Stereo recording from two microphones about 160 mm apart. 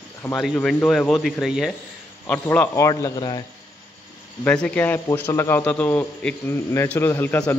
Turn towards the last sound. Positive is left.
turn(degrees=15)  # may be behind; listen again after turning